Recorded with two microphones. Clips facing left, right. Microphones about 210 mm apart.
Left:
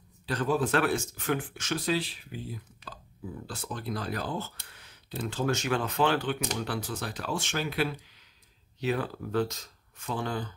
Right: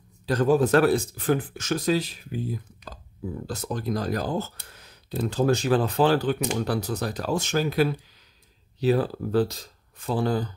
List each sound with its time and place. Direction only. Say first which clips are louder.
0.3 s speech: right 7 dB; 40° right (ahead or behind)